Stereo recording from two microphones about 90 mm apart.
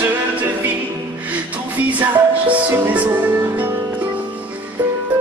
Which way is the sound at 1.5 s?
15° right (ahead or behind).